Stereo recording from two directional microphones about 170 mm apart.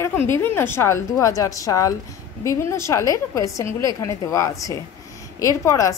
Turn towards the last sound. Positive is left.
turn(degrees=20)  # may be behind; listen again after turning